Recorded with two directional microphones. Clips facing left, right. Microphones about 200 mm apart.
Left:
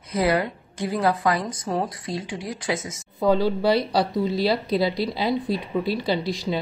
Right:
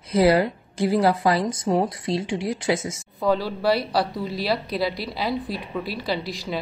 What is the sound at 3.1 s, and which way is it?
Speech, 20° left (ahead or behind).